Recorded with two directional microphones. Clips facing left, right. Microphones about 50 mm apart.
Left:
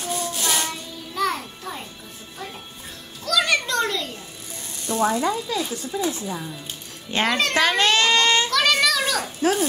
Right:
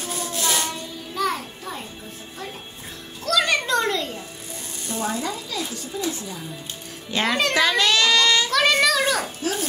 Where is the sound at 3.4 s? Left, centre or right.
Centre.